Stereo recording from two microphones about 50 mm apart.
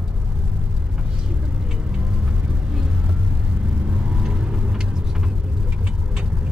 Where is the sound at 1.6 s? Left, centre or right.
Centre.